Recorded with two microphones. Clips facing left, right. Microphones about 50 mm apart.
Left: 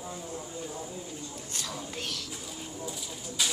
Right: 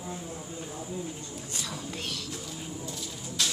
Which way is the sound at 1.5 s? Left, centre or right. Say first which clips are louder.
Right 1 dB; centre.